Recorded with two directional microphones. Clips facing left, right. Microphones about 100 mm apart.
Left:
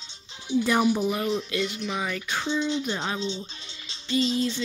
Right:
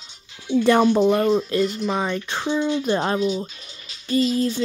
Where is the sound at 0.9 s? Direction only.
90° right.